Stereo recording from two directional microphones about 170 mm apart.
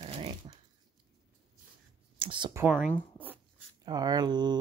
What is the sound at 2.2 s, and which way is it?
Speech, 30° right (ahead or behind).